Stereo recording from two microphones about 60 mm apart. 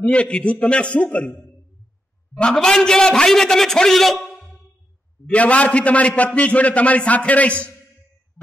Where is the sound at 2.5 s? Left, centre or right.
Centre.